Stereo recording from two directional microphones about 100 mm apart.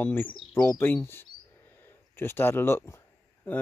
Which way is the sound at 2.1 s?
25° left (ahead or behind).